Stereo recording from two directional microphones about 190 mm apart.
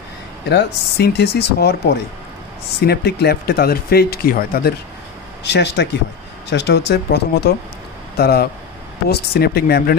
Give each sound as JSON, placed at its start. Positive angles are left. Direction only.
{"t": 0.5, "sound": "speech", "side_deg": 60}
{"t": 5.4, "sound": "speech", "side_deg": 65}